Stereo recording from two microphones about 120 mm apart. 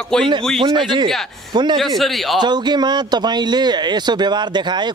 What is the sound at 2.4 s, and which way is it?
Speech, 35° right (ahead or behind).